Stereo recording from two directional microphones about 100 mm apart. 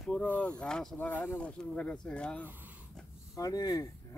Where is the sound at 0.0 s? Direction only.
10° left (ahead or behind).